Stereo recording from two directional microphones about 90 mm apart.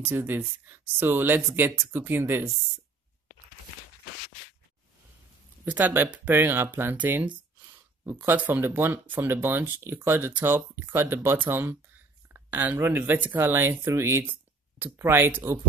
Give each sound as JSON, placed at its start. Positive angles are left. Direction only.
{"t": 0.1, "sound": "speech", "side_deg": -25}
{"t": 5.7, "sound": "speech", "side_deg": -20}
{"t": 12.3, "sound": "a sound", "side_deg": -20}
{"t": 12.7, "sound": "speech", "side_deg": -20}
{"t": 14.2, "sound": "a sound", "side_deg": -20}
{"t": 15.0, "sound": "speech", "side_deg": -25}